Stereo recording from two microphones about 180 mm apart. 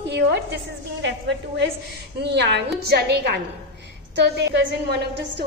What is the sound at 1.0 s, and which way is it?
A woman's voice, 80° right.